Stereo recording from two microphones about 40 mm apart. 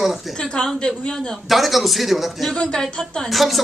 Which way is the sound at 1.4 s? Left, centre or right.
Centre.